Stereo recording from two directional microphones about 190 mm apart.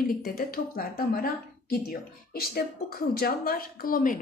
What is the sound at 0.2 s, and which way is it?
A woman's voice, 50° left (ahead or behind).